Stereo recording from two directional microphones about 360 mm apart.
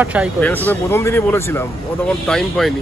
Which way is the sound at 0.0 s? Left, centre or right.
Centre.